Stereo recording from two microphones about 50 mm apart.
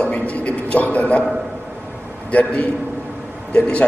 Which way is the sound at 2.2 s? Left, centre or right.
Left.